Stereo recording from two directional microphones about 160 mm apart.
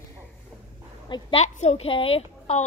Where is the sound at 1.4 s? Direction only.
45° left (ahead or behind).